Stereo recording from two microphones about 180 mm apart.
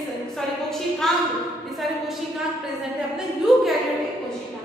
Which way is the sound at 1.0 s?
Centre (ahead or behind).